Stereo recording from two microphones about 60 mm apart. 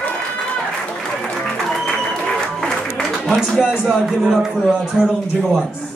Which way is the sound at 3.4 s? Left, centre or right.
Centre.